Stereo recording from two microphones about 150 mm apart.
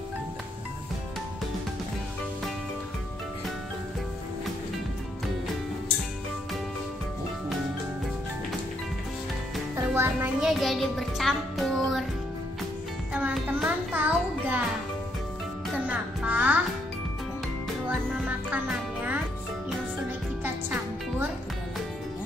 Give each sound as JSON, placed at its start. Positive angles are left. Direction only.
{"t": 9.8, "sound": "a child's voice", "side_deg": -15}
{"t": 10.4, "sound": "music", "side_deg": 0}
{"t": 13.1, "sound": "music", "side_deg": -10}
{"t": 15.8, "sound": "music", "side_deg": -10}
{"t": 17.8, "sound": "music", "side_deg": -10}